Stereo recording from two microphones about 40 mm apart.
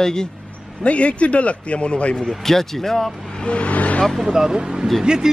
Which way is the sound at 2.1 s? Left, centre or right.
Centre.